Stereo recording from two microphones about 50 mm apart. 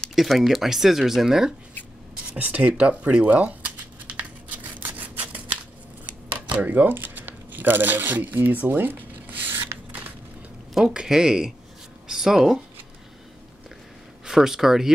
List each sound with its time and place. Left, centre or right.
0.1 s speech: centre
2.3 s speech: right
4.7 s scissors: right
6.5 s speech: right
6.9 s crumpling: right
10.7 s speech: centre
14.2 s speech: centre